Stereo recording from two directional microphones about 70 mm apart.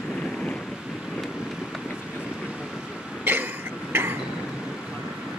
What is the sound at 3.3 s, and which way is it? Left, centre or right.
Vehicle, right.